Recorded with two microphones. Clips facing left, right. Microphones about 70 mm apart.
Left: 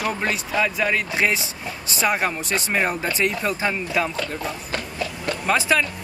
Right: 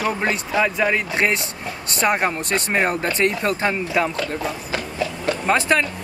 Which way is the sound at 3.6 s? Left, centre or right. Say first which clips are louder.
Right 2 dB; centre.